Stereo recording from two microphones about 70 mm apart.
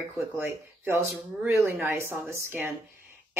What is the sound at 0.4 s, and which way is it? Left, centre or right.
A woman's voice, right.